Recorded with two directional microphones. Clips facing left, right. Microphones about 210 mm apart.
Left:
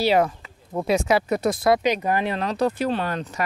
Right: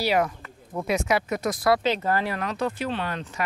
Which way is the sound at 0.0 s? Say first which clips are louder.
Left 4 dB; 30° left (ahead or behind).